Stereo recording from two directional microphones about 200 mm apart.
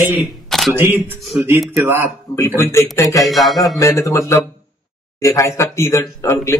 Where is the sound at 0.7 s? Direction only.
10° right (ahead or behind).